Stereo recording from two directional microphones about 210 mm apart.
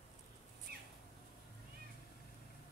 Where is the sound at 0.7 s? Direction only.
50° right (ahead or behind).